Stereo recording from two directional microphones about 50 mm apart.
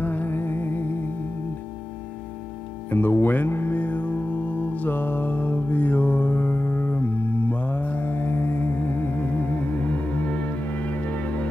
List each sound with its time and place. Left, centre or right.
0.0 s music: left
2.9 s music: left